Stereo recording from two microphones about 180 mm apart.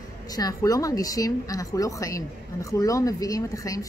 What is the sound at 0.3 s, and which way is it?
A woman's voice, 20° left (ahead or behind).